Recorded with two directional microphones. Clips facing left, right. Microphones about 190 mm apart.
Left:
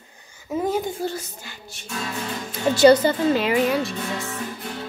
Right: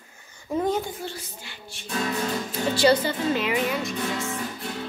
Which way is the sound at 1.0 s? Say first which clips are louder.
Left 7 dB; 40° left (ahead or behind).